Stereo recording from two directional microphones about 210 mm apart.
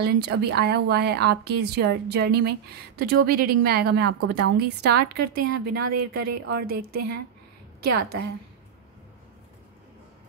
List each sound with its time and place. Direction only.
0.0 s speech: 50° right (ahead or behind)